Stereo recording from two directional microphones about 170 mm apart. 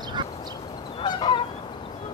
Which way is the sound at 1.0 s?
30° left (ahead or behind).